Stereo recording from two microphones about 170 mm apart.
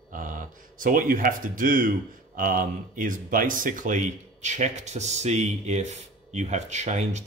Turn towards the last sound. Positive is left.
turn(degrees=-45)  # may be behind; listen again after turning